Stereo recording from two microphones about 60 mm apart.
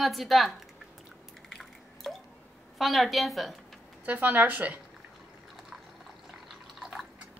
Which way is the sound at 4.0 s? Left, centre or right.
Right.